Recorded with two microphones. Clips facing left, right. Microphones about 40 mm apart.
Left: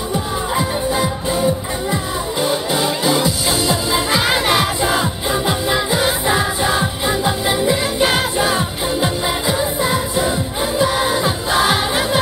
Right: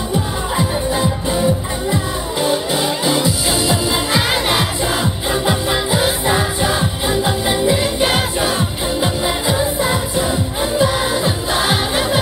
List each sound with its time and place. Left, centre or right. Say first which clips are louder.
2.4 s music: right 1 dB; centre
4.3 s music: left 1 dB; left
5.3 s music: even; centre
7.1 s music: right 1 dB; centre
9.0 s music: right 1 dB; centre
11.2 s music: left 1 dB; left